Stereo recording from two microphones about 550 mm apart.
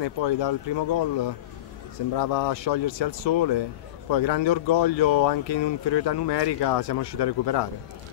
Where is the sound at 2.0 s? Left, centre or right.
Left.